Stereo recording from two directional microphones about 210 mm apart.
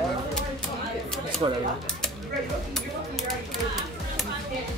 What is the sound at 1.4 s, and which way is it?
Speech, 25° right (ahead or behind).